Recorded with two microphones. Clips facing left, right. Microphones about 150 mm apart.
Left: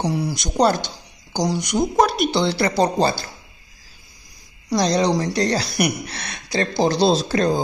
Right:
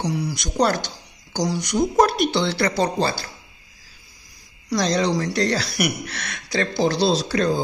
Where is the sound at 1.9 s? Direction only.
Centre (ahead or behind).